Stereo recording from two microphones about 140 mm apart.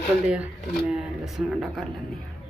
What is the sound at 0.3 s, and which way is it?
Speech, 5° right (ahead or behind).